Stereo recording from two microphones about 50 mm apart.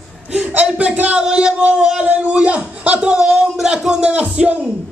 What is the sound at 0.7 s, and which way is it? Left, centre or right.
Speech, right.